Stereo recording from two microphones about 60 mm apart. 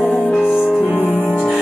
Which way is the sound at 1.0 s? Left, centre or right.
Left.